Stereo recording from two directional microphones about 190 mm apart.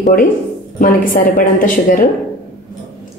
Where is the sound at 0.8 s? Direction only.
45° left (ahead or behind).